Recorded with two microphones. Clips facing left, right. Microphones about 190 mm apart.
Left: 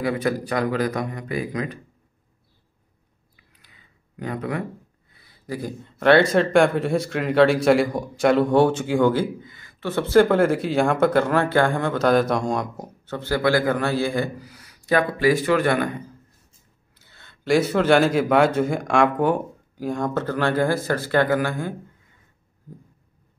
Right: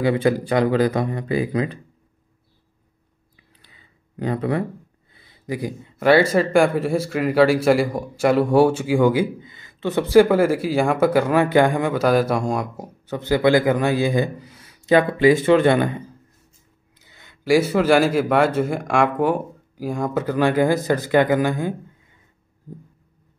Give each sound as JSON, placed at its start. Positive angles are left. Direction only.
{"t": 0.0, "sound": "speech", "side_deg": -25}
{"t": 4.2, "sound": "speech", "side_deg": -30}
{"t": 5.1, "sound": "a man's voice", "side_deg": -20}
{"t": 17.0, "sound": "a man's voice", "side_deg": -15}